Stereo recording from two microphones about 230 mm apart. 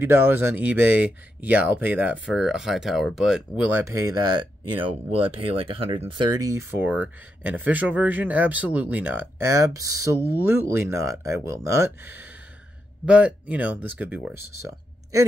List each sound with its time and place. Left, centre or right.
0.0 s speech: centre